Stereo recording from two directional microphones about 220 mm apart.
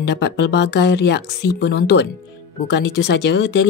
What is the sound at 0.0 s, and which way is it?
Speech, 50° left (ahead or behind).